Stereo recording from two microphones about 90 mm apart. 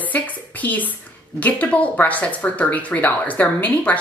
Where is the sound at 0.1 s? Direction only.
20° left (ahead or behind).